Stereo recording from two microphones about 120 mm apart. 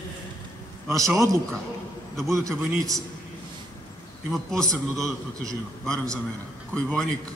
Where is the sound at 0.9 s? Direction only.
25° right (ahead or behind).